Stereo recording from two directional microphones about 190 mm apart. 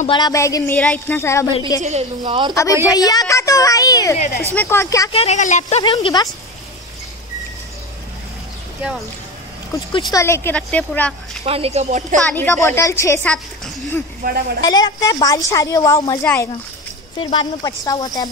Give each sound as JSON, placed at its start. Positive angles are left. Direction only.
{"t": 0.0, "sound": "a woman's voice", "side_deg": 25}
{"t": 1.8, "sound": "a woman's voice", "side_deg": -35}
{"t": 2.5, "sound": "a woman's voice", "side_deg": 15}
{"t": 5.1, "sound": "speech", "side_deg": 35}
{"t": 10.1, "sound": "a woman's voice", "side_deg": 15}
{"t": 11.4, "sound": "speech", "side_deg": -30}
{"t": 12.2, "sound": "a woman's voice", "side_deg": 5}
{"t": 14.2, "sound": "speech", "side_deg": -50}
{"t": 14.6, "sound": "a woman's voice", "side_deg": 20}
{"t": 17.2, "sound": "a woman's voice", "side_deg": 25}